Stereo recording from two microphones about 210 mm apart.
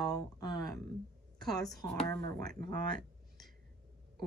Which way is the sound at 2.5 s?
45° right (ahead or behind).